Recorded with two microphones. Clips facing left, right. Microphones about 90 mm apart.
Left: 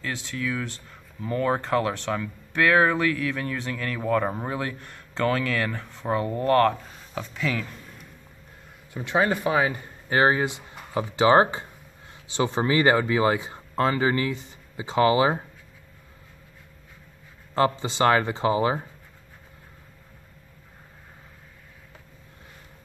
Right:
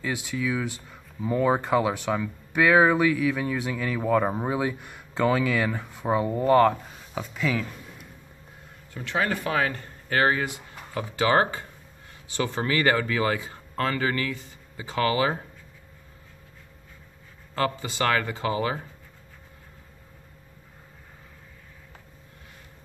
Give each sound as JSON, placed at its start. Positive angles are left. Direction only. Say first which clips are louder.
{"t": 0.0, "sound": "speech", "louder": "right 2 dB", "side_deg": -10}
{"t": 8.9, "sound": "speech", "louder": "left 4 dB", "side_deg": 20}
{"t": 17.6, "sound": "speech", "louder": "left 4 dB", "side_deg": 25}